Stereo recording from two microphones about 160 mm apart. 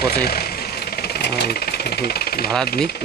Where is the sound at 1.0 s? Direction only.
85° left.